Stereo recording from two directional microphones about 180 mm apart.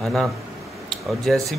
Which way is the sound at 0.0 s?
Centre (ahead or behind).